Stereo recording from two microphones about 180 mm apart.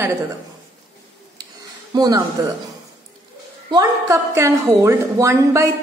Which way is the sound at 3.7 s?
15° right (ahead or behind).